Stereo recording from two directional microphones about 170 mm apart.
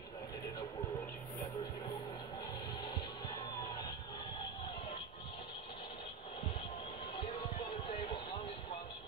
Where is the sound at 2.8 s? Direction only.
30° left (ahead or behind).